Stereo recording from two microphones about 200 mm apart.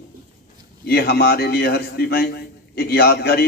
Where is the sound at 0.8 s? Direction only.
50° left (ahead or behind).